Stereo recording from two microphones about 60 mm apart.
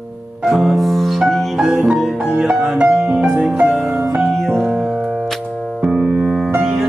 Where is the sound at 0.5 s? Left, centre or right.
Centre.